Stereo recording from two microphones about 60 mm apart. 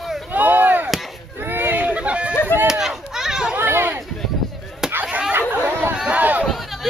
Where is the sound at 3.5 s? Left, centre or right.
Right.